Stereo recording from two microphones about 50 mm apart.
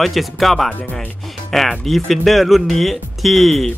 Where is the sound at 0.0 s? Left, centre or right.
Centre.